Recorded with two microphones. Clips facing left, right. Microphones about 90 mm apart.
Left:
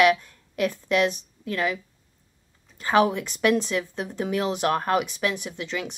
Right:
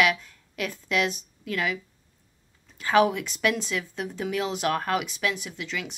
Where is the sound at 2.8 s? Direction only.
35° left (ahead or behind).